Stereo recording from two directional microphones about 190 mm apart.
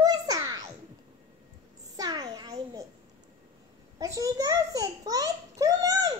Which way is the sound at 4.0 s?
15° right (ahead or behind).